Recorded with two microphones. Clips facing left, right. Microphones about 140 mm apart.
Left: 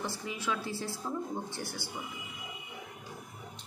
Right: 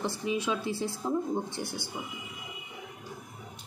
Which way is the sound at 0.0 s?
20° right (ahead or behind).